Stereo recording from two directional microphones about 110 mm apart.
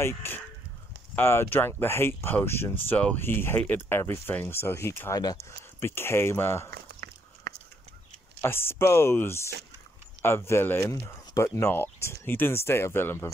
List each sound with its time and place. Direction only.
0.0 s speech: 20° left (ahead or behind)
8.4 s speech: 20° left (ahead or behind)